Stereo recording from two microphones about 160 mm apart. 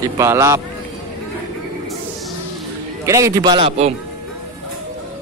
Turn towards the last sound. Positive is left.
turn(degrees=-40)  # may be behind; listen again after turning